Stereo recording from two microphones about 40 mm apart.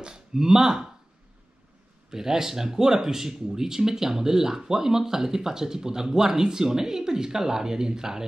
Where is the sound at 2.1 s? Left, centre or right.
Centre.